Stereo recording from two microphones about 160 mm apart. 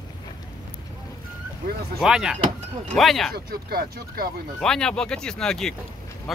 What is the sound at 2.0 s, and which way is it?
Speech, 5° right (ahead or behind).